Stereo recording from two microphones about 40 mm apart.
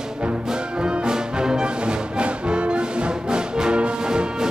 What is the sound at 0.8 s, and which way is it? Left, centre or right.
Music, centre.